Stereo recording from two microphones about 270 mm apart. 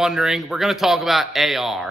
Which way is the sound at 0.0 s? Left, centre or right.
Centre.